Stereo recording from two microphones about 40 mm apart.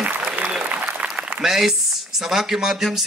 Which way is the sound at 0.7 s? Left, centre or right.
Right.